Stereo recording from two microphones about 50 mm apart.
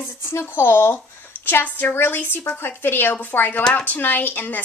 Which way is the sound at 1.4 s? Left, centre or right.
Left.